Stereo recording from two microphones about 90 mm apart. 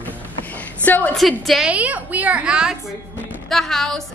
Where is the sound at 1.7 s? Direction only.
15° right (ahead or behind).